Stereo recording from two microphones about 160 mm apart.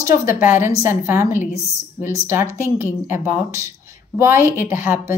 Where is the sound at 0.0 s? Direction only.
15° right (ahead or behind).